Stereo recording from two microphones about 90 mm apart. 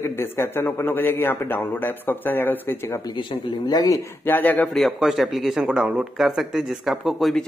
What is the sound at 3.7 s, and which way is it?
Speech, 45° left (ahead or behind).